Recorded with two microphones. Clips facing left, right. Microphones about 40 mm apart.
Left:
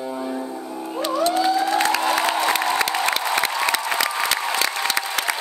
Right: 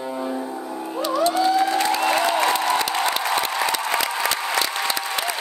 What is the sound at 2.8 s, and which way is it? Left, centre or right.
Applause, left.